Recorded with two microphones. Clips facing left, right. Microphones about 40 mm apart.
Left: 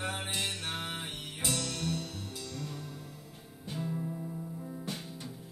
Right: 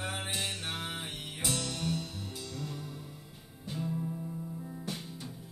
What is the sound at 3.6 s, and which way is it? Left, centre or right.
Music, centre.